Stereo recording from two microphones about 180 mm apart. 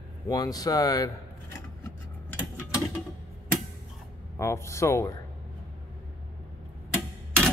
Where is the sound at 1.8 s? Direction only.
15° left (ahead or behind).